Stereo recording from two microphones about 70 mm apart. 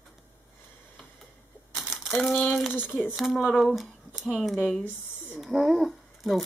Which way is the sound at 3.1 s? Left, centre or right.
Centre.